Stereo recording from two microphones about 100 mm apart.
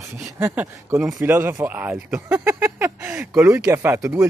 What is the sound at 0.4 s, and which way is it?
Speech, 20° right (ahead or behind).